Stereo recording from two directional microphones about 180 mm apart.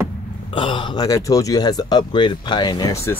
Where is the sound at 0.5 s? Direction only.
25° left (ahead or behind).